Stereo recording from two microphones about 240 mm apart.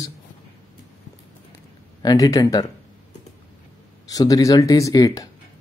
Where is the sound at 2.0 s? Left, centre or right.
Centre.